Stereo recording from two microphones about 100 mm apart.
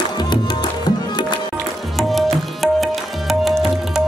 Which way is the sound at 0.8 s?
45° left (ahead or behind).